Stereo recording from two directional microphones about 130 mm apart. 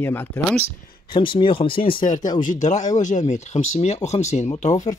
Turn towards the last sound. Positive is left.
turn(degrees=65)  # may be behind; listen again after turning